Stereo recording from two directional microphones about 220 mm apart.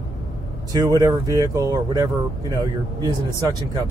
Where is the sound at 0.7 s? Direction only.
15° right (ahead or behind).